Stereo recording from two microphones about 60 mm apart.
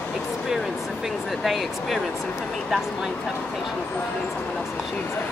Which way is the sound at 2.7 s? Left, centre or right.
Centre.